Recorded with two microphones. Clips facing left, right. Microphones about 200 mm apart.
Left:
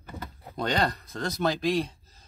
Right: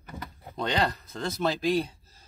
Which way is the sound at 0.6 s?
Centre (ahead or behind).